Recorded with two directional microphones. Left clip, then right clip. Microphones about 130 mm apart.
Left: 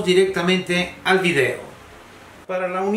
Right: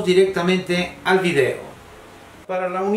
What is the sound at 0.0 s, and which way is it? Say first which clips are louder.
Speech: right 1 dB; centre (ahead or behind).